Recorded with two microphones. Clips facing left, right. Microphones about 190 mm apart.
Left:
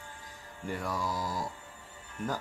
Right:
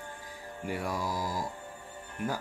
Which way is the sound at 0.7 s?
10° right (ahead or behind).